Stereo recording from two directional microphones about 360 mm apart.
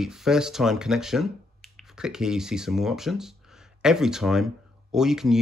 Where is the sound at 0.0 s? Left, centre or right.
Centre.